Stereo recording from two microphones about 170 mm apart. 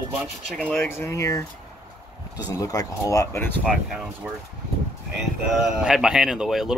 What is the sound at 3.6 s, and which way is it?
Speech, centre (ahead or behind).